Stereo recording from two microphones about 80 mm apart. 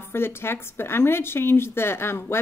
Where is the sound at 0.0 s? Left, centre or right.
Left.